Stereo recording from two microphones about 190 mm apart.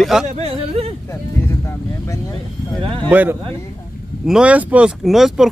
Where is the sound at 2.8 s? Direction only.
25° right (ahead or behind).